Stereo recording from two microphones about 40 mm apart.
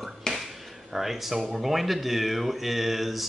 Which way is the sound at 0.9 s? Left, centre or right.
Centre.